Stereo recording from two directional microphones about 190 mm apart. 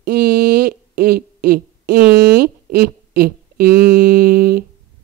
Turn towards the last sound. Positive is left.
turn(degrees=-50)  # may be behind; listen again after turning